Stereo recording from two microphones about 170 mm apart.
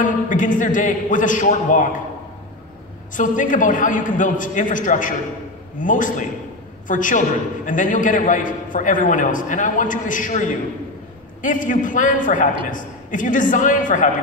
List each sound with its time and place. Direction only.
0.0 s a man's voice: 50° left (ahead or behind)
3.2 s a man's voice: 50° left (ahead or behind)